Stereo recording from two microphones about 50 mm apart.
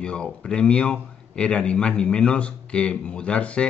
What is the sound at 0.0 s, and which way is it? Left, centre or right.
A man's voice, centre.